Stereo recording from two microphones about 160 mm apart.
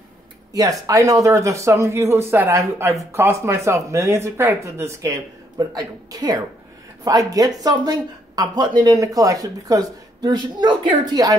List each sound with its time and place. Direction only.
0.5 s speech: 20° right (ahead or behind)